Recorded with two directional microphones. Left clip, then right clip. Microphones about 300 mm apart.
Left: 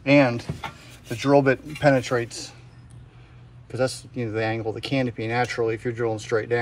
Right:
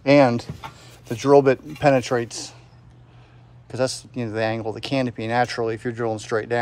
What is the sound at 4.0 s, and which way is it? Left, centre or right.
Speech, centre.